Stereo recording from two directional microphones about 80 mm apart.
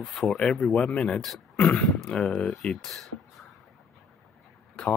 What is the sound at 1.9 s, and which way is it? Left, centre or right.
Speech, centre.